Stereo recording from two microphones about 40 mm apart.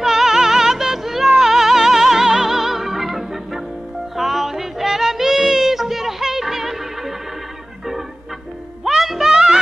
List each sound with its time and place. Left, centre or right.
0.0 s music: centre
8.8 s music: centre